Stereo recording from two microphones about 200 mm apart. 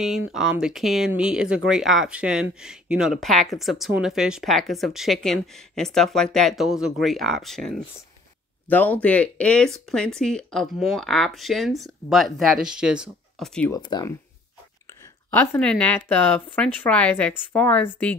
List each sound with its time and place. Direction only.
0.0 s speech: 5° right (ahead or behind)
13.7 s speech: 20° left (ahead or behind)
15.3 s speech: 10° left (ahead or behind)